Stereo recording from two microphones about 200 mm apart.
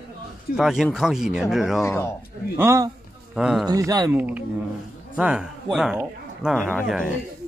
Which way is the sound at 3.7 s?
20° right (ahead or behind).